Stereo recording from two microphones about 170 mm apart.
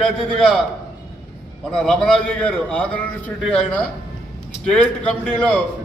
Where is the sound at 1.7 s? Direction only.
5° left (ahead or behind).